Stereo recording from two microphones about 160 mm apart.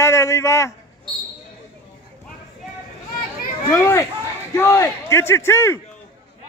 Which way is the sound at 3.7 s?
15° left (ahead or behind).